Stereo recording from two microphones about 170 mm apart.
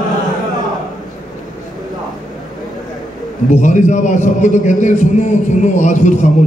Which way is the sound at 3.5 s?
45° left (ahead or behind).